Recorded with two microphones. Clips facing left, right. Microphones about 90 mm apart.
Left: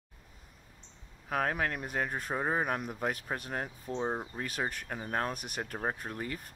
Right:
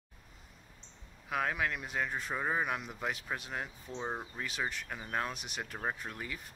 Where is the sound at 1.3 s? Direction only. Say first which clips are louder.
Left 2 dB; 45° left (ahead or behind).